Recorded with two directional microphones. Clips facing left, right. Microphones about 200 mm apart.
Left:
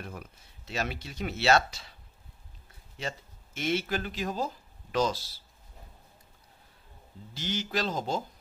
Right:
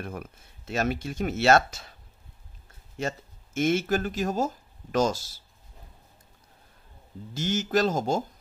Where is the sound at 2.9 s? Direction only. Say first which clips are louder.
Right 6 dB; 45° right (ahead or behind).